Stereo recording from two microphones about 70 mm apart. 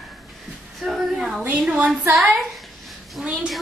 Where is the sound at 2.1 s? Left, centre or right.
Centre.